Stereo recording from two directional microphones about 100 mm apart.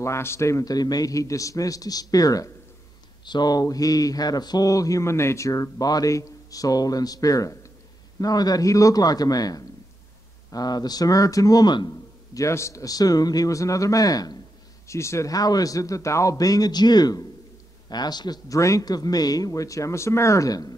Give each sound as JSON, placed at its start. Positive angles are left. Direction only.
{"t": 0.0, "sound": "speech", "side_deg": 25}
{"t": 12.4, "sound": "speech", "side_deg": 30}
{"t": 14.9, "sound": "speech", "side_deg": 30}